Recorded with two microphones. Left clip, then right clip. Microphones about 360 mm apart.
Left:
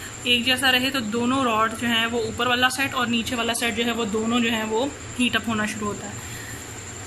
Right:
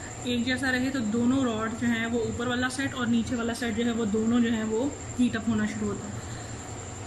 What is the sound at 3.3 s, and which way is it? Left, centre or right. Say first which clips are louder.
Speech: left 6 dB; left.